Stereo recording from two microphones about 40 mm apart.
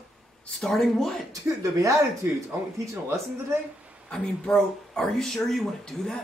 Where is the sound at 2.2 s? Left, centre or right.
Right.